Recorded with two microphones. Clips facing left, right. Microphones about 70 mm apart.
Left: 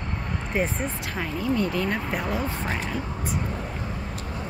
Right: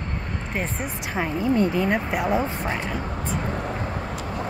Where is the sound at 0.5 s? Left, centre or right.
Centre.